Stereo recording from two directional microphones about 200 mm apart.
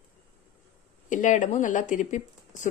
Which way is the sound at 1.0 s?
40° left (ahead or behind).